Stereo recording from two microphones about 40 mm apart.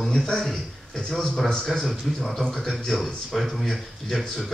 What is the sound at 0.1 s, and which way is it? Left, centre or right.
A man's voice, centre.